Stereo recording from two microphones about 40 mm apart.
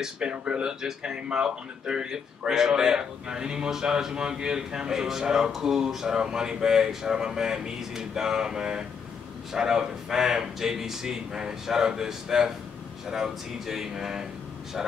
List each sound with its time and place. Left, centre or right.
0.0 s speech: right